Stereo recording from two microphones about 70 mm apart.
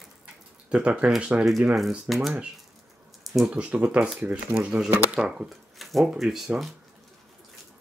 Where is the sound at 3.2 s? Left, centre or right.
Centre.